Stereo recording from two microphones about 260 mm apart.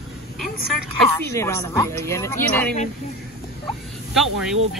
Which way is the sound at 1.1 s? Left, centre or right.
Centre.